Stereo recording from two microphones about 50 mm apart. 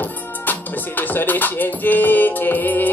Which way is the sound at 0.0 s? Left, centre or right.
Left.